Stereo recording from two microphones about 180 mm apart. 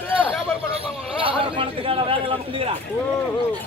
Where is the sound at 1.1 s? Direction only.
30° right (ahead or behind).